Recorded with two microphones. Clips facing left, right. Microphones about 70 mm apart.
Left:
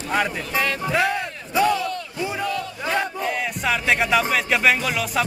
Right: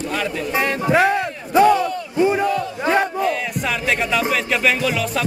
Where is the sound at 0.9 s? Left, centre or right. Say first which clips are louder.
Right 6 dB; right.